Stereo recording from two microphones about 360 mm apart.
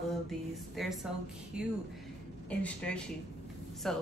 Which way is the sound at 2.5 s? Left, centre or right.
Centre.